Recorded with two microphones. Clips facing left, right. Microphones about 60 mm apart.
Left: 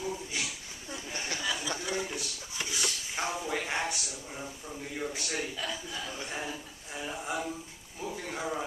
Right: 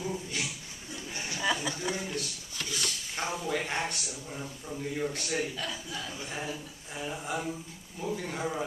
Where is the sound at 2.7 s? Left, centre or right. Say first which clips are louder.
Left 1 dB; centre.